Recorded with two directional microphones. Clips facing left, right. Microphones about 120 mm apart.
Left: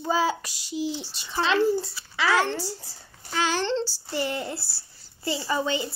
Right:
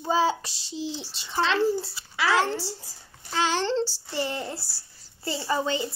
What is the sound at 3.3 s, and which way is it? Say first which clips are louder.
A child's voice: right 1 dB; 25° right (ahead or behind).